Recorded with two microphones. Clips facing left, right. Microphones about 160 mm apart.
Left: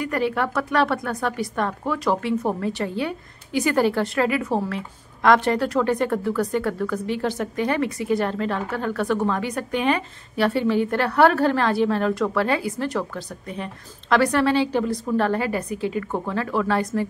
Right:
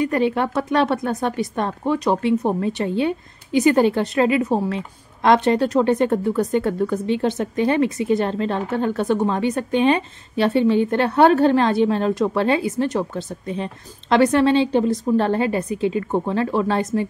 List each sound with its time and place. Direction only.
0.0 s a woman's voice: 20° right (ahead or behind)